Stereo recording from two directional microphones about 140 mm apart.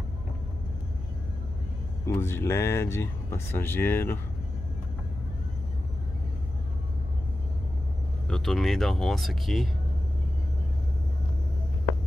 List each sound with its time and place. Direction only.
2.0 s speech: 20° left (ahead or behind)
8.3 s speech: 5° left (ahead or behind)